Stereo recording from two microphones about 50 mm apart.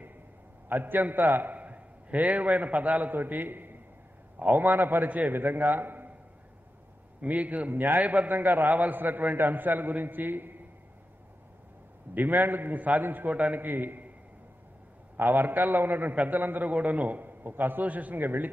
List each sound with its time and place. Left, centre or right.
0.7 s a man's voice: right
7.2 s a man's voice: right
12.1 s a man's voice: right
15.1 s a man's voice: right